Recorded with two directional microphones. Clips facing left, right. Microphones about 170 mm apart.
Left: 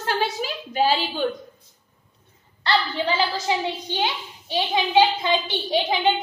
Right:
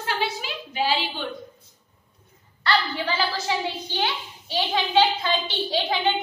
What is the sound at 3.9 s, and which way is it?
A child's voice, 20° left (ahead or behind).